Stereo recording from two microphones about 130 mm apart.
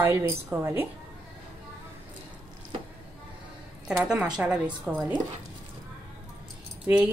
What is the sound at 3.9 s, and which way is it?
A woman's voice, 5° right (ahead or behind).